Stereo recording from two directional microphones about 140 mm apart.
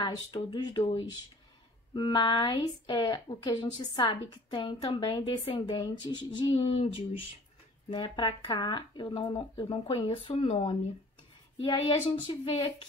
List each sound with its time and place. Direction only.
0.0 s a woman's voice: 30° left (ahead or behind)